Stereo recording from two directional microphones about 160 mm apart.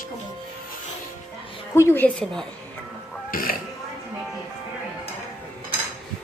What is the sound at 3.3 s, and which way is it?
Speech, 65° left (ahead or behind).